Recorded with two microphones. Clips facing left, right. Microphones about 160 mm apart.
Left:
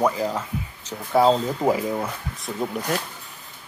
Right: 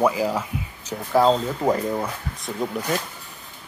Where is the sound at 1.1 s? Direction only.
5° left (ahead or behind).